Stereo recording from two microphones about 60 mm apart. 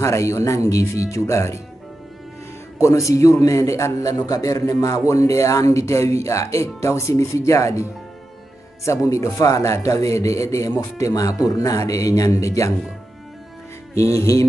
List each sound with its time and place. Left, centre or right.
0.0 s speech: left
2.8 s speech: left
13.9 s speech: left